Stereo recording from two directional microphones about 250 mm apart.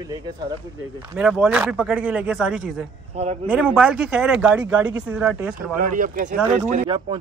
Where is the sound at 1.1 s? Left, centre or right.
Centre.